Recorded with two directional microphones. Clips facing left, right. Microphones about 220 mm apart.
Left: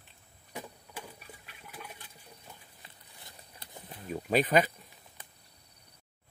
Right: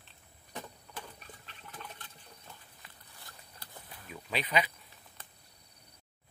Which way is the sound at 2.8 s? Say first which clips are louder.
Left 1 dB; 25° left (ahead or behind).